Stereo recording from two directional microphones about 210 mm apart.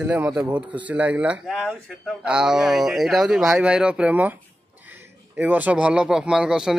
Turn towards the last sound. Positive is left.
turn(degrees=-5)  # may be behind; listen again after turning